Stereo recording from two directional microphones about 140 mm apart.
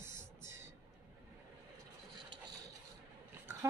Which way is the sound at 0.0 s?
20° right (ahead or behind).